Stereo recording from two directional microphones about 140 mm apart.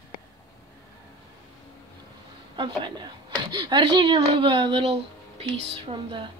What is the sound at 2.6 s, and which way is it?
Speech, 35° right (ahead or behind).